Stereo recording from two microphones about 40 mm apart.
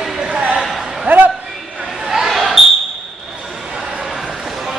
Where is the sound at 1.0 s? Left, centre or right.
Right.